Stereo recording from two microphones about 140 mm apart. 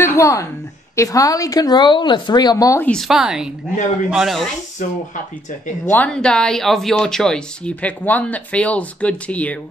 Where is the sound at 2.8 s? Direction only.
5° left (ahead or behind).